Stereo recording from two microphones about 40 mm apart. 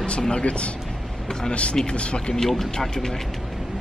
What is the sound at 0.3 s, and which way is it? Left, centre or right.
Speech, left.